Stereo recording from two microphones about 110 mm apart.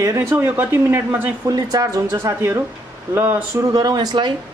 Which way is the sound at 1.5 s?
35° right (ahead or behind).